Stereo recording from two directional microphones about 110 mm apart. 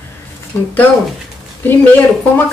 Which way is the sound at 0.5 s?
25° left (ahead or behind).